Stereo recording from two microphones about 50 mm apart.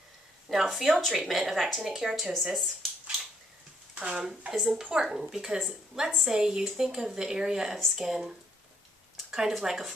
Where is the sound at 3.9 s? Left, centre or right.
Centre.